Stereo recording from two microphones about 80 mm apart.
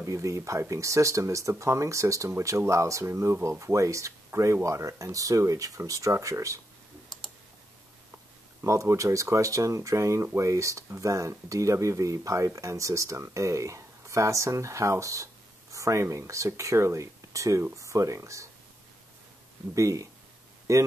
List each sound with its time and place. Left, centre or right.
0.0 s speech: right
8.6 s speech: right
19.7 s speech: right